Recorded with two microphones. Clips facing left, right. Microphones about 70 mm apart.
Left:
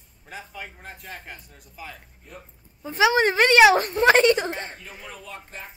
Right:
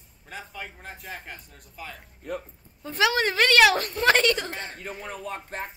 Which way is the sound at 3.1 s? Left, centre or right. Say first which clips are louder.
Left 4 dB; left.